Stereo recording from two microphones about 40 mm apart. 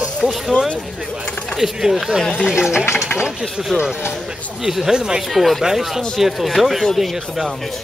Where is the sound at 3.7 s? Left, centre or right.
Right.